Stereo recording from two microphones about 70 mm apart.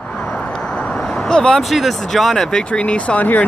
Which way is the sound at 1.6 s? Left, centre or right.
Centre.